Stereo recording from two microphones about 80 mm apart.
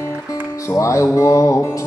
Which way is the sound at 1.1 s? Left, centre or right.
Left.